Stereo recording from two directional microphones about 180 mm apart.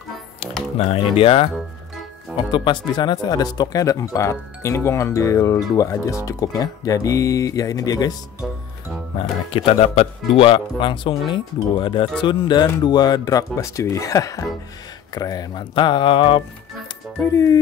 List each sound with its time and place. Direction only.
0.7 s speech: 30° left (ahead or behind)
2.5 s speech: 25° left (ahead or behind)
9.5 s speech: 30° left (ahead or behind)
17.3 s music: 15° left (ahead or behind)